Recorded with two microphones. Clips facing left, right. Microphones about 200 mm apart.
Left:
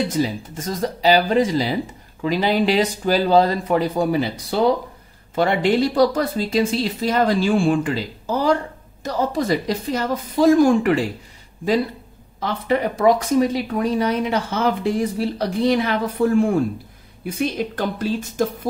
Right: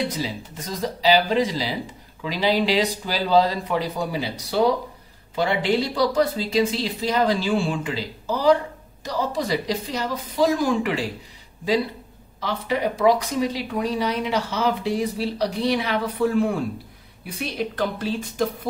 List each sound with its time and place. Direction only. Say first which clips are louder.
0.1 s speech: left 7 dB; 50° left (ahead or behind)
12.4 s speech: left 4 dB; 50° left (ahead or behind)